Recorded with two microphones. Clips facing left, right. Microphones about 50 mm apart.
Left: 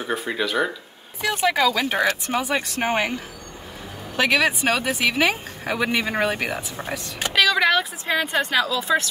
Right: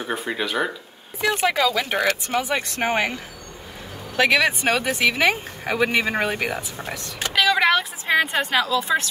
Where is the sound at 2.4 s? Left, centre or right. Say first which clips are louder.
Even; centre.